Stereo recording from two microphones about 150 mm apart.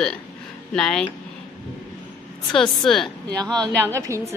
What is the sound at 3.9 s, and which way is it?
Speech, 20° right (ahead or behind).